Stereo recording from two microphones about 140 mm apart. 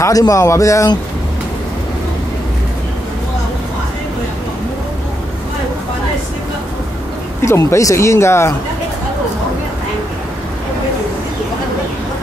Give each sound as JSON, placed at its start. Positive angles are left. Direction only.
{"t": 0.0, "sound": "speech", "side_deg": 25}
{"t": 7.4, "sound": "speech", "side_deg": 20}